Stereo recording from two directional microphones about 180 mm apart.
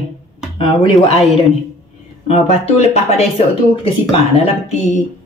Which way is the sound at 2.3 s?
35° left (ahead or behind).